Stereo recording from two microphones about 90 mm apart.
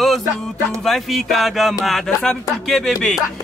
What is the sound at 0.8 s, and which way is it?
Speech, centre (ahead or behind).